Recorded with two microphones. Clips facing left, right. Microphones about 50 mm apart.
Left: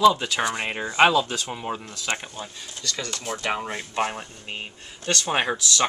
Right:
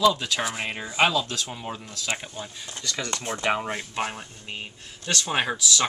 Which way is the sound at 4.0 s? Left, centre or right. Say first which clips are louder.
Left 4 dB; centre.